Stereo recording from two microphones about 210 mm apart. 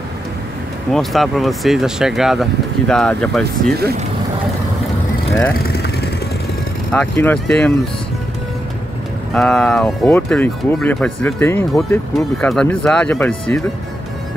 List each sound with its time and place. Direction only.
0.9 s speech: centre (ahead or behind)
5.5 s vehicle: 50° left (ahead or behind)
6.9 s speech: 10° left (ahead or behind)
9.3 s speech: 5° left (ahead or behind)